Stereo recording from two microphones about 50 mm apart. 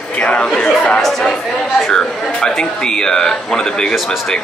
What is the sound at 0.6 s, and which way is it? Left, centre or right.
Chatter, left.